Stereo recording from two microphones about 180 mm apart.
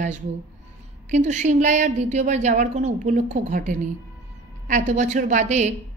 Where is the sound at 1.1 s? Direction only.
40° right (ahead or behind).